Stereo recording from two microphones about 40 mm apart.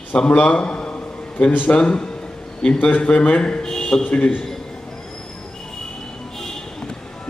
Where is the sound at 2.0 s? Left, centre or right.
Left.